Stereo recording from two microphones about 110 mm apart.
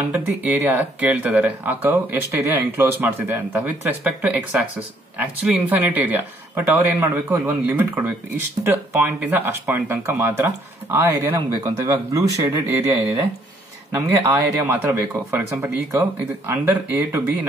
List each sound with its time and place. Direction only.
0.1 s speech: 15° right (ahead or behind)
13.9 s speech: 25° right (ahead or behind)